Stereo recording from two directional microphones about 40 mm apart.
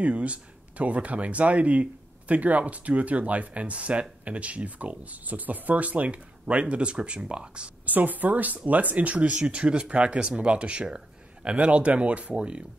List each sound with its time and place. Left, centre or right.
0.0 s speech: right
7.8 s a woman's voice: right